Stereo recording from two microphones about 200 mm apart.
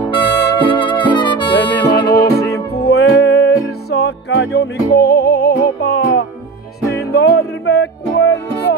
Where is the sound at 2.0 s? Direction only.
50° left (ahead or behind).